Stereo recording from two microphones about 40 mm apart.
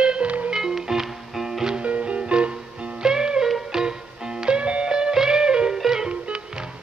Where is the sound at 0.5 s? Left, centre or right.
Centre.